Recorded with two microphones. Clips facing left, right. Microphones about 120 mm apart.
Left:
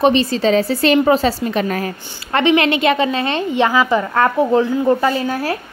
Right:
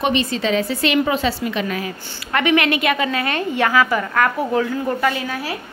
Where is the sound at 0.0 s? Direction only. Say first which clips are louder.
Left 6 dB; 35° left (ahead or behind).